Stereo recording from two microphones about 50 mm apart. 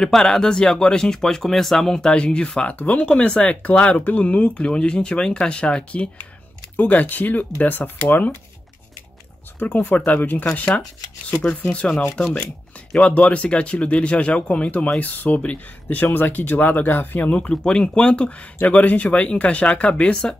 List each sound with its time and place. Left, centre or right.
0.0 s speech: centre; by 3.1 s left
3.1 s speech: centre; by 8.4 s left
9.8 s speech: left
12.9 s speech: left
17.2 s speech: left